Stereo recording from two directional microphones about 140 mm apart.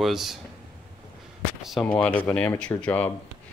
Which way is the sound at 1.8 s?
10° left (ahead or behind).